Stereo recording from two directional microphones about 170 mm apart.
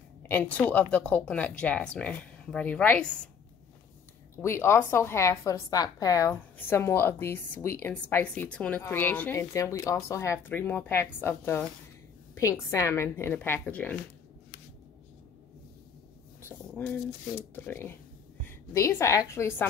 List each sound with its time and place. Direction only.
0.2 s a woman's voice: 10° left (ahead or behind)
4.4 s a woman's voice: 15° left (ahead or behind)
16.7 s a woman's voice: 10° left (ahead or behind)